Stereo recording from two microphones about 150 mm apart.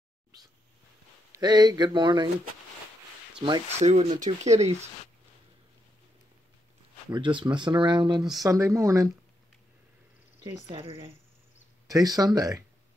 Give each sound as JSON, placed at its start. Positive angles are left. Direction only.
{"t": 1.3, "sound": "speech", "side_deg": -30}
{"t": 3.3, "sound": "speech", "side_deg": -30}
{"t": 3.8, "sound": "speech", "side_deg": -50}
{"t": 7.1, "sound": "speech", "side_deg": -35}
{"t": 8.4, "sound": "speech", "side_deg": -20}
{"t": 10.4, "sound": "speech", "side_deg": -35}
{"t": 11.9, "sound": "speech", "side_deg": -25}